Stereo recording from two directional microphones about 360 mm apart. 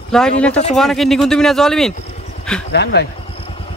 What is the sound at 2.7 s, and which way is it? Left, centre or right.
Speech, left.